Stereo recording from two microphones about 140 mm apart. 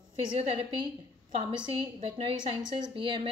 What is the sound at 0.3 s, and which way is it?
Speech, 40° right (ahead or behind).